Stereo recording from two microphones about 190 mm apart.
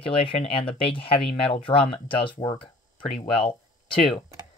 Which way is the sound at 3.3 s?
25° left (ahead or behind).